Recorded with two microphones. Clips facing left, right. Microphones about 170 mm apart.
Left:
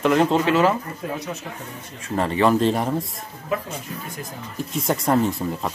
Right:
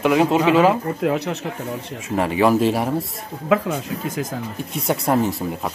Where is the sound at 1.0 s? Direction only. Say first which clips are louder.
Right 8 dB; 75° right (ahead or behind).